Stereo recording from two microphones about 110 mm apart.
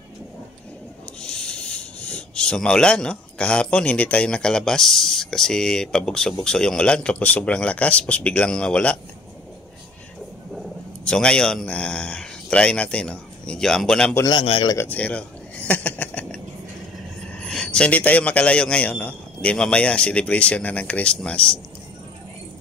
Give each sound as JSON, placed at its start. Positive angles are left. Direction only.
{"t": 1.2, "sound": "speech", "side_deg": 10}
{"t": 10.5, "sound": "speech", "side_deg": 5}
{"t": 14.4, "sound": "a man's voice", "side_deg": 60}
{"t": 14.8, "sound": "a sound", "side_deg": 15}
{"t": 17.3, "sound": "speech", "side_deg": 10}